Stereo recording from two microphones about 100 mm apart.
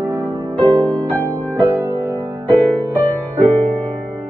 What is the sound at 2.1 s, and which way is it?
Music, 20° left (ahead or behind).